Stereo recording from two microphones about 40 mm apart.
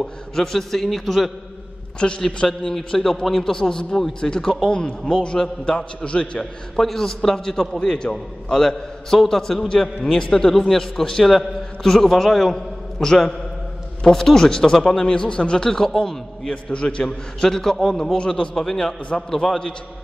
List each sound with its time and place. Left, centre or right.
0.0 s a man's voice: centre
2.0 s a man's voice: left
2.2 s a man's voice: centre
6.8 s a man's voice: centre
10.5 s a man's voice: centre
10.8 s a man's voice: centre
12.5 s a man's voice: centre
16.4 s a man's voice: left
17.9 s a man's voice: centre